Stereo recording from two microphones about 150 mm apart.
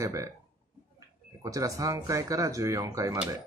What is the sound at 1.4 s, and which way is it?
Speech, 25° right (ahead or behind).